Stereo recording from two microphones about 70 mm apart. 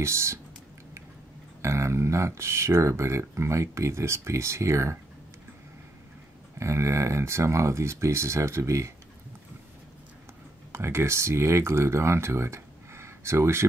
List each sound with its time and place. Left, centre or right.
0.0 s speech: right
1.6 s speech: right
6.6 s speech: right
10.7 s speech: right